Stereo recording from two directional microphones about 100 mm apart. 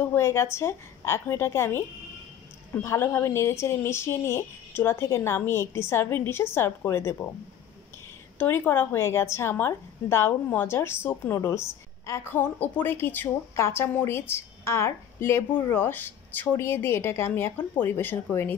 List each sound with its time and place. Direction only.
0.0 s a woman's voice: 25° left (ahead or behind)
8.4 s a woman's voice: 20° left (ahead or behind)